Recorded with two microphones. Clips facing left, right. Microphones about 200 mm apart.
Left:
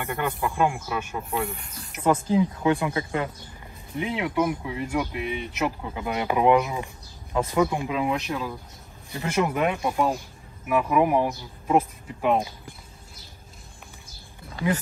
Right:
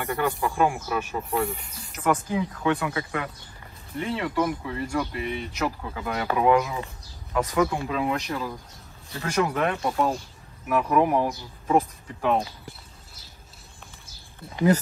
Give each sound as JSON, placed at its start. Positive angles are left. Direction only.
{"t": 0.0, "sound": "speech", "side_deg": 0}
{"t": 2.0, "sound": "speech", "side_deg": 25}
{"t": 4.0, "sound": "speech", "side_deg": 15}